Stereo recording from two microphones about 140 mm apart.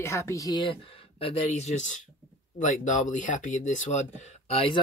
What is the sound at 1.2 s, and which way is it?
Speech, 55° left (ahead or behind).